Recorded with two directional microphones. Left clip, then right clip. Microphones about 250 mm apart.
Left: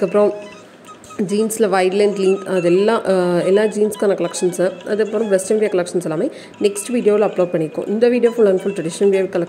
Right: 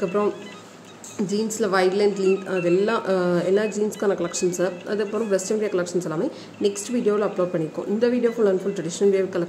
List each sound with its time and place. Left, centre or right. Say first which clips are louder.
0.0 s speech: left 8 dB; centre